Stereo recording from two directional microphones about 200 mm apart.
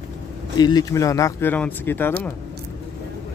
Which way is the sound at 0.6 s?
20° left (ahead or behind).